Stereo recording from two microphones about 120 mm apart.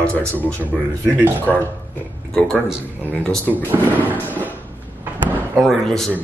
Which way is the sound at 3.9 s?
15° left (ahead or behind).